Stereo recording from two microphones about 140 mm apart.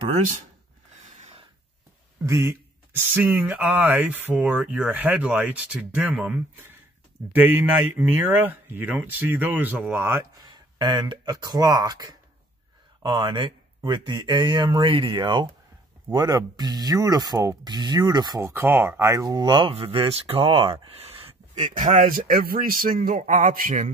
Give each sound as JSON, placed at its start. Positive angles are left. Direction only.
{"t": 0.0, "sound": "speech", "side_deg": -50}
{"t": 1.1, "sound": "snort", "side_deg": -50}
{"t": 2.2, "sound": "speech", "side_deg": -20}
{"t": 10.4, "sound": "speech", "side_deg": -35}
{"t": 18.5, "sound": "speech", "side_deg": -15}
{"t": 21.7, "sound": "a man's voice", "side_deg": -75}